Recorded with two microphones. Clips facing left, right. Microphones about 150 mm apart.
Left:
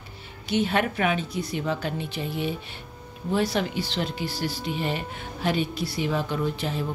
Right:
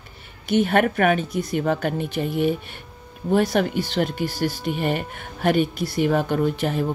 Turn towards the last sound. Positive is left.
turn(degrees=-55)  # may be behind; listen again after turning